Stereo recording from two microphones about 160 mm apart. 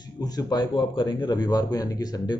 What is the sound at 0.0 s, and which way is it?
Speech, 25° left (ahead or behind).